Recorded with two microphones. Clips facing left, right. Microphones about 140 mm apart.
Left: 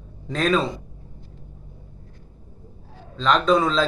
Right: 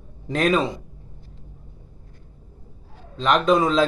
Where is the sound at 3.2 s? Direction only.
15° right (ahead or behind).